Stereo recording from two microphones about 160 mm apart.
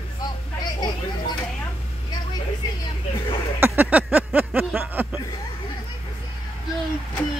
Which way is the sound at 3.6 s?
10° right (ahead or behind).